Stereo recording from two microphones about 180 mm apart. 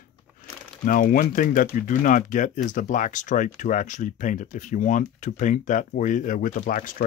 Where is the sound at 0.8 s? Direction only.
50° left (ahead or behind).